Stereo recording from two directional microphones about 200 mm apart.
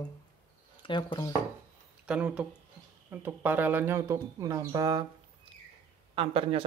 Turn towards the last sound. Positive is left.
turn(degrees=-30)  # may be behind; listen again after turning